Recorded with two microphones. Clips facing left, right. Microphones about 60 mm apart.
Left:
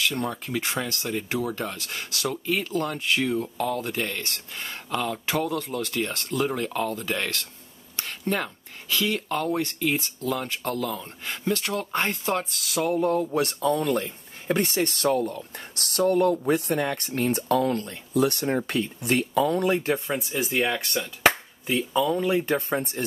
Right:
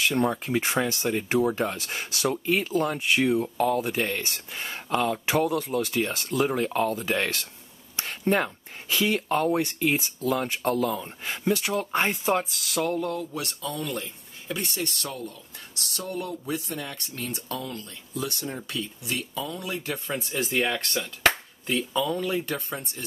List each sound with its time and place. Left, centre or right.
0.0 s speech: centre
13.1 s speech: left
20.1 s speech: centre
22.2 s speech: left
22.8 s speech: left